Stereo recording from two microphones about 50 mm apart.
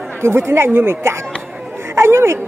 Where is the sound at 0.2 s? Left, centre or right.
Right.